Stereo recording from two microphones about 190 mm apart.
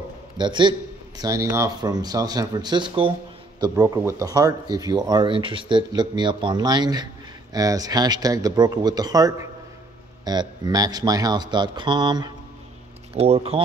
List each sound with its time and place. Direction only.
0.4 s speech: 25° right (ahead or behind)